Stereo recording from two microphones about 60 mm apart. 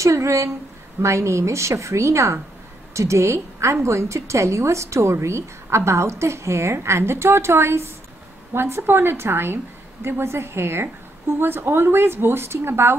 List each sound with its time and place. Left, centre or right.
0.0 s a woman's voice: right